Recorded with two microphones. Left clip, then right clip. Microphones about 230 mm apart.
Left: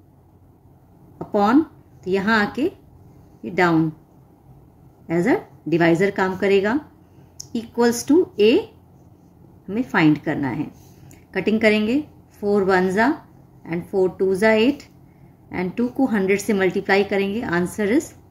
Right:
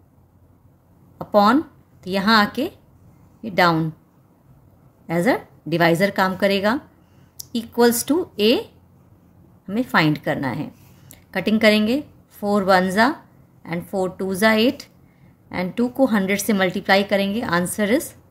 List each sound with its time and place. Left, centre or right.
1.1 s a sound: right
2.0 s a woman's voice: right
5.0 s a woman's voice: right
9.7 s a woman's voice: right